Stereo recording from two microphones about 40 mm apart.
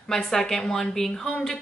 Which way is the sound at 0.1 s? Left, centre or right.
Centre.